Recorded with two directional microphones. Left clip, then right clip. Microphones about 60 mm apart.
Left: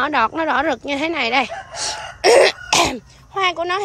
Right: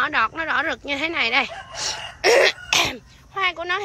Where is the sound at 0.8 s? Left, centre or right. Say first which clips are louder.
Left 2 dB; left.